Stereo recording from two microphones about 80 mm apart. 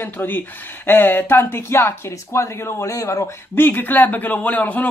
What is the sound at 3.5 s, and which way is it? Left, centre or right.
Speech, left.